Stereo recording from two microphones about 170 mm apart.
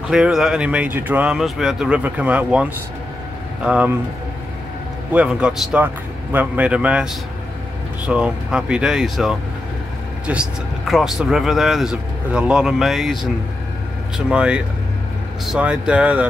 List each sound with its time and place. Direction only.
0.1 s speech: 5° right (ahead or behind)
5.1 s speech: 5° right (ahead or behind)
8.1 s speech: 5° right (ahead or behind)